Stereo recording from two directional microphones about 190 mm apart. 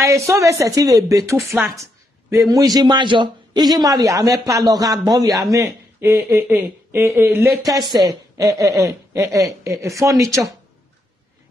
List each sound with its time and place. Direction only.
0.0 s a woman's voice: 15° right (ahead or behind)